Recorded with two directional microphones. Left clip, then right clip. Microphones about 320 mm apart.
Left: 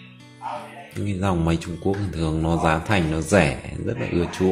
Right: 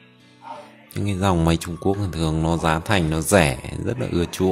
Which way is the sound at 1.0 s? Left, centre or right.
Right.